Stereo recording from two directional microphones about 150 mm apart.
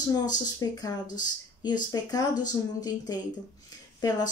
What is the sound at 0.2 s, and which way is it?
Speech, 25° left (ahead or behind).